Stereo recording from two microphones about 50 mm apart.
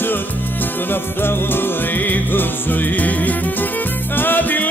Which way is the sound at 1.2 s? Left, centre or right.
Left.